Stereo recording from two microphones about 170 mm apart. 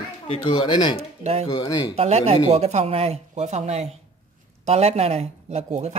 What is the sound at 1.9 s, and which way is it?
A woman's voice, 40° right (ahead or behind).